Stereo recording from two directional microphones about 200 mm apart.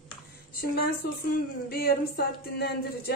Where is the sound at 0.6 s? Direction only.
50° left (ahead or behind).